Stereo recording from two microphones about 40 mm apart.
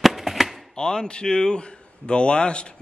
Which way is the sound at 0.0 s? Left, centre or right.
Centre.